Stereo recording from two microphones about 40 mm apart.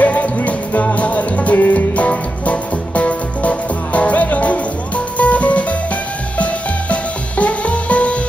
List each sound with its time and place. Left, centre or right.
0.0 s music: left